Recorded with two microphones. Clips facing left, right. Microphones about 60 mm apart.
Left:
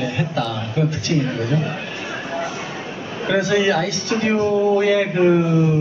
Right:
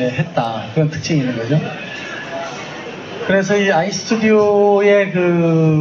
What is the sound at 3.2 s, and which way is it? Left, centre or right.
Speech, right.